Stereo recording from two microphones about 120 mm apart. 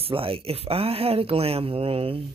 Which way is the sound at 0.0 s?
50° right (ahead or behind).